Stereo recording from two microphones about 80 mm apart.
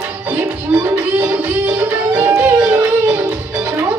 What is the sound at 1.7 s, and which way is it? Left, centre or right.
Music, right.